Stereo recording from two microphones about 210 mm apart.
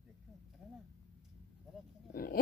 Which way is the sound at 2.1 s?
45° left (ahead or behind).